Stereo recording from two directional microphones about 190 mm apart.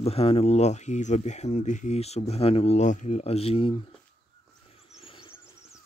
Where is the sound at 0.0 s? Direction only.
30° left (ahead or behind).